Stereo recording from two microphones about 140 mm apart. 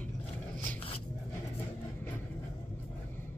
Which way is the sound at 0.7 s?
40° left (ahead or behind).